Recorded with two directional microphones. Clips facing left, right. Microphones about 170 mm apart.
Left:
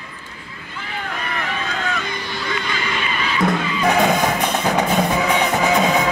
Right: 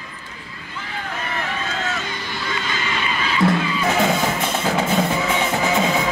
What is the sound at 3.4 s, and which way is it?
Music, 15° left (ahead or behind).